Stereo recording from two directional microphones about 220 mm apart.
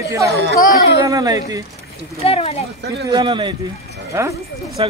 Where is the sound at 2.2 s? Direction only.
25° left (ahead or behind).